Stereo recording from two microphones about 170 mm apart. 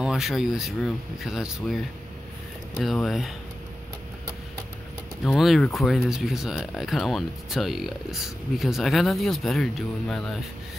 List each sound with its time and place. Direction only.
0.0 s speech: 5° right (ahead or behind)
2.8 s speech: centre (ahead or behind)
5.2 s speech: centre (ahead or behind)